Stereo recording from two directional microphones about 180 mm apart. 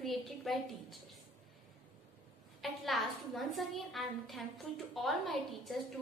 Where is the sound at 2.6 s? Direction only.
Centre (ahead or behind).